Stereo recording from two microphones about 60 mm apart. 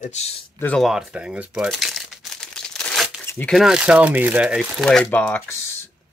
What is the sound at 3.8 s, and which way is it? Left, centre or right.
Speech, right.